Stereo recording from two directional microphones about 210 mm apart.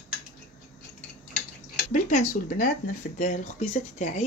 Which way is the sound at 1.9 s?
35° left (ahead or behind).